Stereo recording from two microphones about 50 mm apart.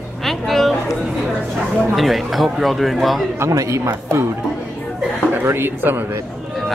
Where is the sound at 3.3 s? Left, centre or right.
Right.